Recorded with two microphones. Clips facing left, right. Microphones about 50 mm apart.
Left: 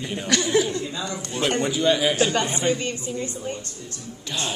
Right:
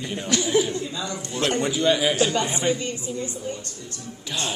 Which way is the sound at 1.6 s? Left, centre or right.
Centre.